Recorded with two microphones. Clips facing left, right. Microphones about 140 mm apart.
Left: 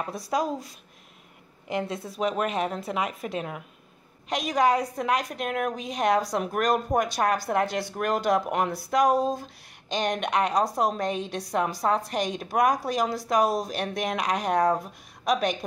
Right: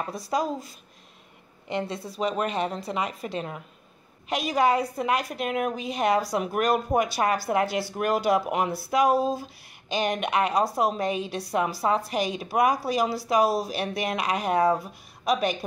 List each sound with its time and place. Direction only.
0.0 s a woman's voice: centre (ahead or behind)